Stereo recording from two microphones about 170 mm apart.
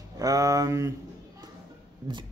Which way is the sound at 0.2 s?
20° right (ahead or behind).